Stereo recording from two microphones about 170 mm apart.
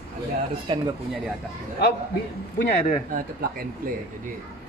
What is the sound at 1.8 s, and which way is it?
Speech, 70° left (ahead or behind).